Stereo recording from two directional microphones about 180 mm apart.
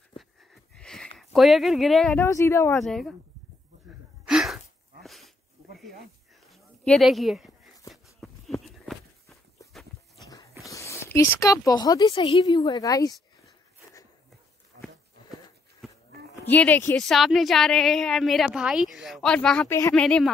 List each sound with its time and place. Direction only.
0.7 s a sound: 5° left (ahead or behind)
2.1 s speech: 15° left (ahead or behind)
2.8 s a woman's voice: centre (ahead or behind)
4.3 s gasp: 5° right (ahead or behind)
5.0 s a sound: centre (ahead or behind)
6.4 s a sound: 5° left (ahead or behind)
8.5 s walk: centre (ahead or behind)
10.6 s speech: 15° left (ahead or behind)
16.4 s a woman's voice: 10° left (ahead or behind)